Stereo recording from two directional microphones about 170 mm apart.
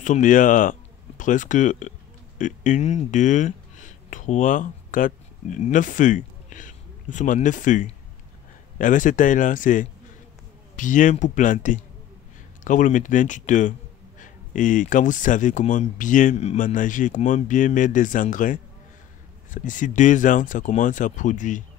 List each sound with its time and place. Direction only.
0.0 s speech: 50° left (ahead or behind)